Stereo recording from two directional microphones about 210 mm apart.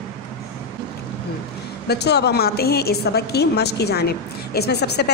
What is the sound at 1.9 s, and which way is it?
A woman's voice, 50° left (ahead or behind).